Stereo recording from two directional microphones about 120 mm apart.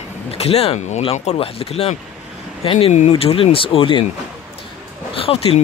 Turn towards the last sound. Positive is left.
turn(degrees=55)  # may be behind; listen again after turning